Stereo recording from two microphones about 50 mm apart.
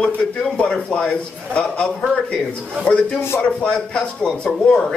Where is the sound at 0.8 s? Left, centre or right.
Left.